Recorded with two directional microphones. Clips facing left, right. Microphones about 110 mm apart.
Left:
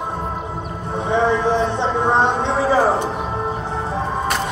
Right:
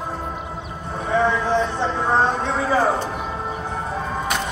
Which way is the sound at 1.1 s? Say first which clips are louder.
Left 2 dB; 25° left (ahead or behind).